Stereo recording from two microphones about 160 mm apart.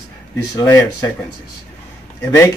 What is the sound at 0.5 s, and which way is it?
Speech, 15° left (ahead or behind).